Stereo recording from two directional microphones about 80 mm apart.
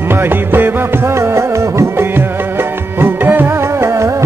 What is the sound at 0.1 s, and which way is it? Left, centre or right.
Music, right.